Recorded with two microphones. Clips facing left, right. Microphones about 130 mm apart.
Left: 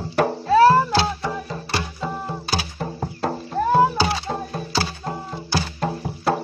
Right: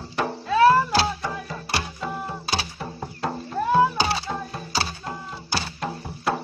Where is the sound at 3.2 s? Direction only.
30° left (ahead or behind).